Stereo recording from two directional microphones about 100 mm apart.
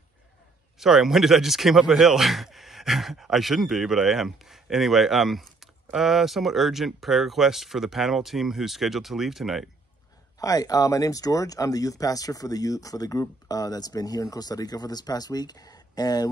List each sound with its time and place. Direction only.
0.7 s speech: 5° right (ahead or behind)
10.4 s speech: 35° left (ahead or behind)